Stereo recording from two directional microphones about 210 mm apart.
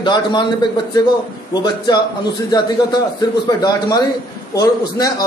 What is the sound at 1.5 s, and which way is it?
Speech, 20° left (ahead or behind).